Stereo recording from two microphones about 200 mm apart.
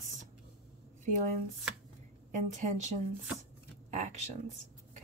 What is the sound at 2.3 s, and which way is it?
Speech, 35° right (ahead or behind).